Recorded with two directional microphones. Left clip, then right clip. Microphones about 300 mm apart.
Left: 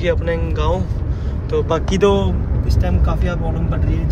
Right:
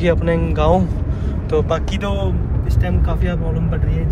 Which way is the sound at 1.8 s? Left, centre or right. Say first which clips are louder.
Left 9 dB; left.